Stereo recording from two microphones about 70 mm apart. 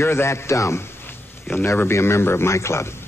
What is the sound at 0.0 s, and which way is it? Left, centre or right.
A man's voice, left.